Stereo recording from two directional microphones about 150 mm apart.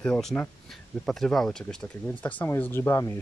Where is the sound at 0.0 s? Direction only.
5° left (ahead or behind).